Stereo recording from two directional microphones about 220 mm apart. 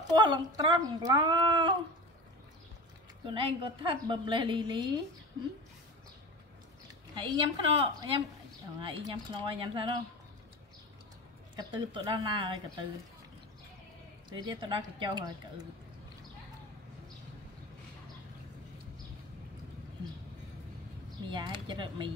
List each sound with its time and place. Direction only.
0.1 s a woman's voice: 20° right (ahead or behind)
3.3 s a woman's voice: 25° right (ahead or behind)
7.2 s a woman's voice: 25° right (ahead or behind)
11.5 s a woman's voice: 20° right (ahead or behind)
14.3 s a woman's voice: 20° right (ahead or behind)
21.3 s a woman's voice: 20° right (ahead or behind)